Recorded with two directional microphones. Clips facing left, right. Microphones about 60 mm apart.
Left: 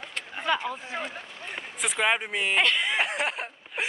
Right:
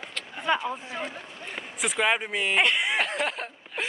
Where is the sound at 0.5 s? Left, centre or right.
Right.